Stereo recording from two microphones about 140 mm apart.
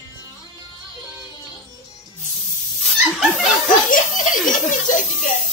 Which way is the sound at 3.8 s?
75° left (ahead or behind).